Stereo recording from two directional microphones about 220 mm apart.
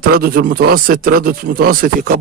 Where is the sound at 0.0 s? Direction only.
45° right (ahead or behind).